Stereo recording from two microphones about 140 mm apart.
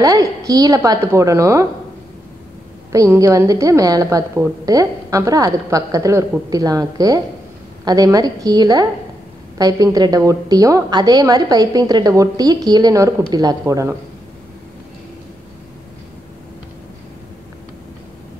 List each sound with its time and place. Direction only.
0.0 s a woman's voice: 25° right (ahead or behind)
2.9 s a woman's voice: 25° right (ahead or behind)